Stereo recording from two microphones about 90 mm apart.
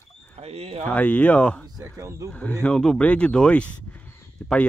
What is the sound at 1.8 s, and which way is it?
Speech, 35° right (ahead or behind).